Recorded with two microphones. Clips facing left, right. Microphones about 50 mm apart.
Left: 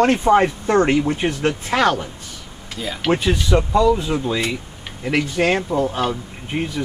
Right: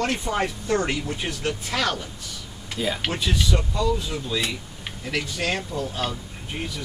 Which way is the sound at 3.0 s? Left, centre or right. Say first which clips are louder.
Left 7 dB; left.